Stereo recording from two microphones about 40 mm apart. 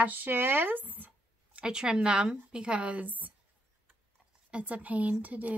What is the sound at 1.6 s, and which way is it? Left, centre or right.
A woman's voice, centre.